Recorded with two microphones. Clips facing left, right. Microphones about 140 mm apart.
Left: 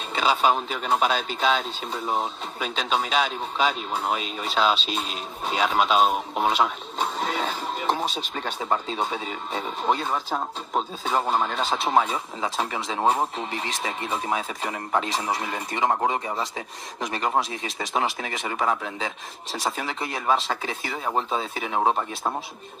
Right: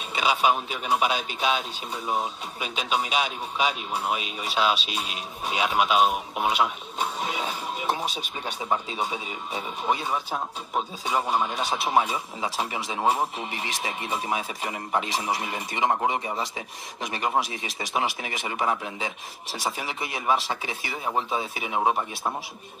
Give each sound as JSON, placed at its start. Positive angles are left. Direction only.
{"t": 0.1, "sound": "speech", "side_deg": -10}
{"t": 7.7, "sound": "speech", "side_deg": -10}